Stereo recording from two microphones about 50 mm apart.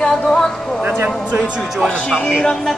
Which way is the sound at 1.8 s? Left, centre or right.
Left.